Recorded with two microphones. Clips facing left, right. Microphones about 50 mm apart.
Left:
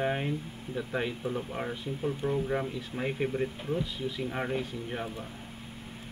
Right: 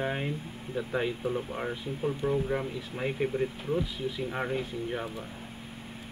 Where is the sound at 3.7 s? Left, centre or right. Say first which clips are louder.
Right 2 dB; centre.